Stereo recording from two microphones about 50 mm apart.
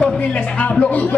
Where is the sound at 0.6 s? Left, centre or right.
Left.